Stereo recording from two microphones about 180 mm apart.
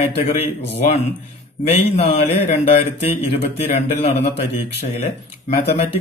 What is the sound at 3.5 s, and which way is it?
Speech, 35° left (ahead or behind).